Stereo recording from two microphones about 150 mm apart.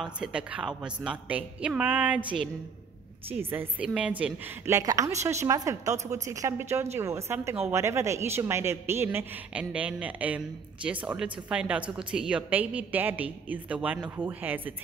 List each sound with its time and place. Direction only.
0.0 s a woman's voice: 5° right (ahead or behind)
3.4 s a woman's voice: 10° right (ahead or behind)